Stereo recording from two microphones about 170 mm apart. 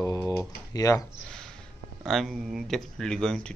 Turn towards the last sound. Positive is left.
turn(degrees=5)  # may be behind; listen again after turning